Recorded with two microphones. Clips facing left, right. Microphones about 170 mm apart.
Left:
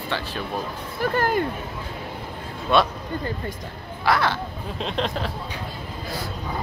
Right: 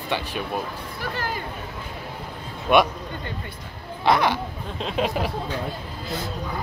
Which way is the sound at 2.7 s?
20° right (ahead or behind).